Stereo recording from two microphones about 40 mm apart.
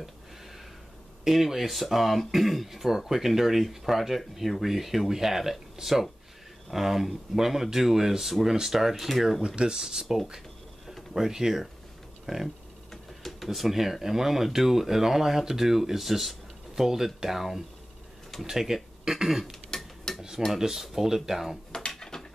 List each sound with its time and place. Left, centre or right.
1.2 s speech: centre
12.9 s speech: centre
19.7 s dishes: centre
20.2 s dishes: centre
20.5 s speech: centre
21.8 s a sound: centre